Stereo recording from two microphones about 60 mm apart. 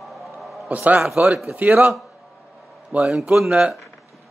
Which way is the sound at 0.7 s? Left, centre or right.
Right.